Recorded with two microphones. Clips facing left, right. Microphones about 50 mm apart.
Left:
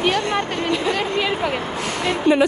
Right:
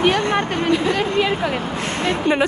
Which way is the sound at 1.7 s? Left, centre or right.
Right.